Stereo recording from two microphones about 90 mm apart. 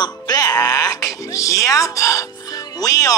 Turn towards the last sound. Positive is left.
turn(degrees=40)  # may be behind; listen again after turning